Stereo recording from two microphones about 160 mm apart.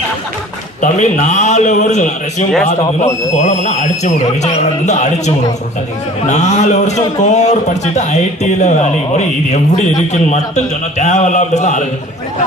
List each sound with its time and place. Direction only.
0.7 s a man's voice: 50° left (ahead or behind)